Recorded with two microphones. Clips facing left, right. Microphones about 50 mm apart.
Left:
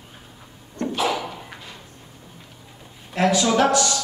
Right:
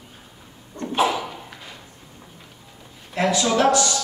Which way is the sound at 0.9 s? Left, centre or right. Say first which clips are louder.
Right 3 dB; right.